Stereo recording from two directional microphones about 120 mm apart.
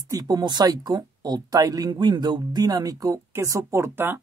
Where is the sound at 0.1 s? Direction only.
30° right (ahead or behind).